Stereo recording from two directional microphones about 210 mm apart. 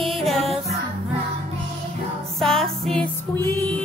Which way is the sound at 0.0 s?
Centre (ahead or behind).